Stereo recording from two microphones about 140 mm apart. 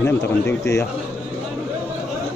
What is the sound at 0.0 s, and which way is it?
Speech, 15° left (ahead or behind).